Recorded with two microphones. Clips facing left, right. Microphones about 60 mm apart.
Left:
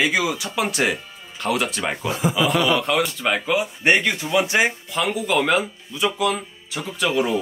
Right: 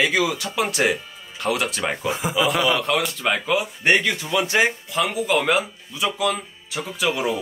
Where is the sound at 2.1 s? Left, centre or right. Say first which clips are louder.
Left 4 dB; right.